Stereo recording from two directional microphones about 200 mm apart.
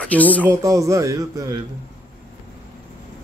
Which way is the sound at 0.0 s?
5° left (ahead or behind).